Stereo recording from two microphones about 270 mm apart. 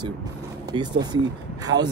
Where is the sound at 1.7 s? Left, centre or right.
Right.